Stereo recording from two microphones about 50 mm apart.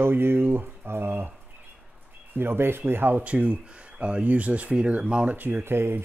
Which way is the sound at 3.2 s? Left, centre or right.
Right.